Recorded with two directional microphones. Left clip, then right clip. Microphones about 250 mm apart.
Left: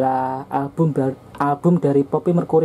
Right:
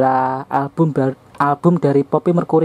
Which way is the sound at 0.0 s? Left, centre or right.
Centre.